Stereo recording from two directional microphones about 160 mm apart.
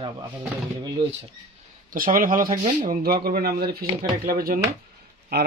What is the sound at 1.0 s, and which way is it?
Speech, 25° right (ahead or behind).